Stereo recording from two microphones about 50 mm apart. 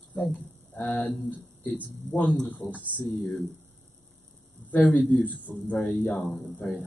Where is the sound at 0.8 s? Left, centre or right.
Left.